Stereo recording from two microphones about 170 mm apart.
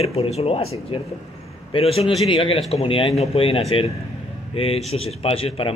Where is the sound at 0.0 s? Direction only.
35° left (ahead or behind).